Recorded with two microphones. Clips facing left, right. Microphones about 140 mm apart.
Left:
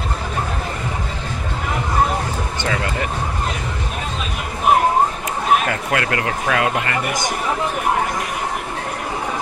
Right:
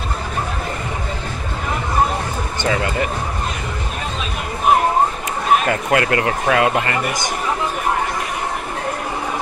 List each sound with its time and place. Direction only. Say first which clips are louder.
5.7 s speech: right 4 dB; 30° right (ahead or behind)